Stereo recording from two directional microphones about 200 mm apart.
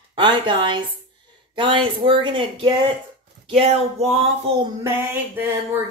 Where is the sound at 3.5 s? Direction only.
30° right (ahead or behind).